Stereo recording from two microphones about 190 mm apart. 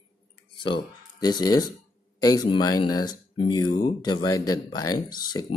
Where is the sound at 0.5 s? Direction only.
25° left (ahead or behind).